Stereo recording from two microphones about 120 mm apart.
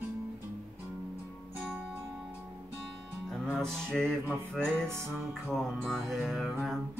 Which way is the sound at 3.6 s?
5° left (ahead or behind).